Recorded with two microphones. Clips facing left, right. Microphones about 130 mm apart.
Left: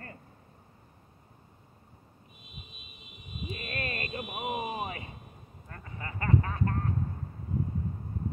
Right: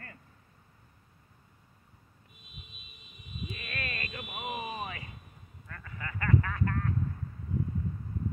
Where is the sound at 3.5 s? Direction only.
35° left (ahead or behind).